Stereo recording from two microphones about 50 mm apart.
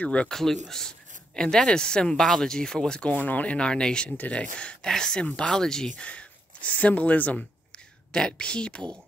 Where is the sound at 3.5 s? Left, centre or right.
Centre.